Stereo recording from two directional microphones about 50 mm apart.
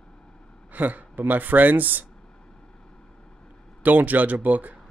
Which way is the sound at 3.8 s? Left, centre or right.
Right.